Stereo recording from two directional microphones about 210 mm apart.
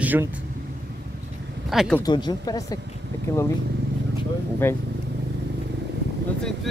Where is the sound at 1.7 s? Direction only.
Centre (ahead or behind).